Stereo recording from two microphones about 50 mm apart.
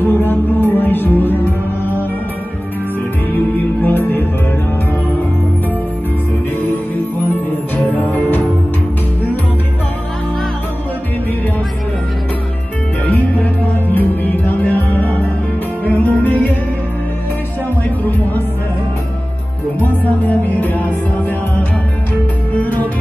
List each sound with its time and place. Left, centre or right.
0.0 s music: left
3.5 s music: left
7.7 s music: left
13.0 s music: left
18.0 s music: left
19.8 s music: left
22.5 s music: left